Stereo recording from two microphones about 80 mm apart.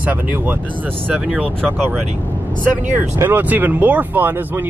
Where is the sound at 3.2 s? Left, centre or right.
Right.